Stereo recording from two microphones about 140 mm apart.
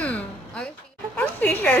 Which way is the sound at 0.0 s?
10° left (ahead or behind).